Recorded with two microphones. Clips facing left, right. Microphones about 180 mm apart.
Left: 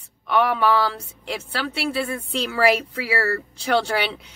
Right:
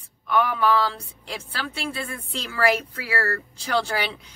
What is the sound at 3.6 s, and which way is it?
Speech, 65° left (ahead or behind).